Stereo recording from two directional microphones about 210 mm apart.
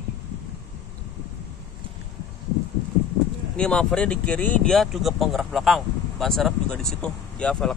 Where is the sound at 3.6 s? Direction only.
5° left (ahead or behind).